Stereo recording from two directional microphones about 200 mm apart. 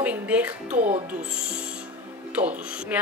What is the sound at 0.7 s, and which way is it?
Speech, 35° right (ahead or behind).